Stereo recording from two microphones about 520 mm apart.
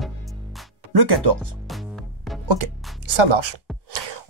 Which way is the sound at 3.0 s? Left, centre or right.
Right.